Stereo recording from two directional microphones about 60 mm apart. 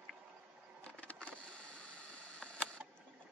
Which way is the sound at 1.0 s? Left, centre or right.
Left.